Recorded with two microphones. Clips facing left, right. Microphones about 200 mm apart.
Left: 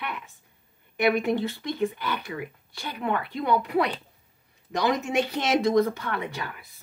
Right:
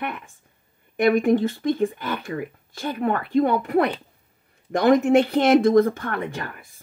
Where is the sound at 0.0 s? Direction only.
50° right (ahead or behind).